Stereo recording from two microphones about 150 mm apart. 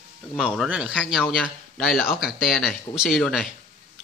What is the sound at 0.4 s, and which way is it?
A man's voice, 5° right (ahead or behind).